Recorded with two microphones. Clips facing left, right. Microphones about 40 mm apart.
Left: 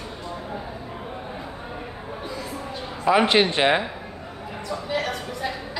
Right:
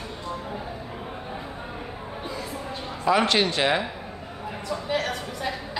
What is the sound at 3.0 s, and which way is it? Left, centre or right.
Speech, centre.